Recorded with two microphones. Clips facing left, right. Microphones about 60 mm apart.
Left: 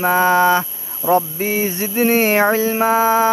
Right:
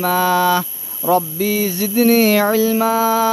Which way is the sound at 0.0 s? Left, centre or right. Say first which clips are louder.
Left 2 dB; left.